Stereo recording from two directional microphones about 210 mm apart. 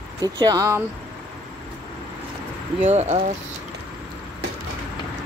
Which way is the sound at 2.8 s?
30° right (ahead or behind).